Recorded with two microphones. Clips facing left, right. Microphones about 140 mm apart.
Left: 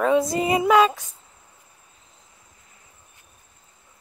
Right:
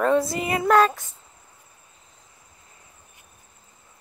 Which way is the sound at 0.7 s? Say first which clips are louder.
Right 1 dB; 5° left (ahead or behind).